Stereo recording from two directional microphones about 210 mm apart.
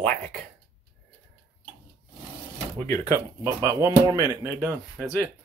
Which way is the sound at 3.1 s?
15° right (ahead or behind).